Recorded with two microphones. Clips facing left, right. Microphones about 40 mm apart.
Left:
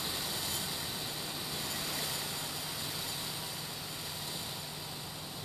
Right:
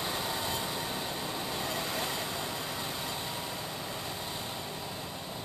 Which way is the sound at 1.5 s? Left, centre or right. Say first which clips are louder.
Right 5 dB; right.